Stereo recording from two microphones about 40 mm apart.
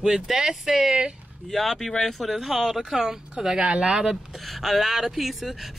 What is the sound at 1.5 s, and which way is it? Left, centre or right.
Speech, centre.